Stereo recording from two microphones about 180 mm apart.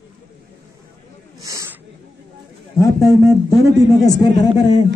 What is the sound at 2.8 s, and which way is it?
Speech, 20° left (ahead or behind).